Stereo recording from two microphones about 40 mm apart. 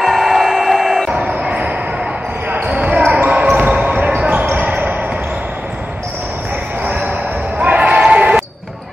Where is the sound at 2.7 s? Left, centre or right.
Right.